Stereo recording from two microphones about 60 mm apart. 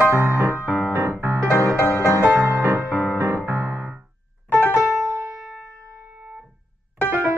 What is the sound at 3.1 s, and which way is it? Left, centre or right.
Music, right.